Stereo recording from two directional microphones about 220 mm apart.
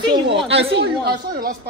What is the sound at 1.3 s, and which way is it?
Speech, 40° right (ahead or behind).